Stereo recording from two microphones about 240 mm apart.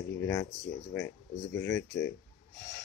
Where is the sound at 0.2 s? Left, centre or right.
Centre.